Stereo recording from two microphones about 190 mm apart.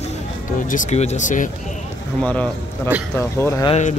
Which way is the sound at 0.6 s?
45° left (ahead or behind).